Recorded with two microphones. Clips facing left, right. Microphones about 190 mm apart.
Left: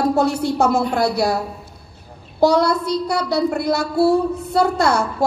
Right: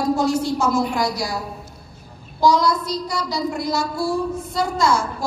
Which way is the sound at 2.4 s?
60° left (ahead or behind).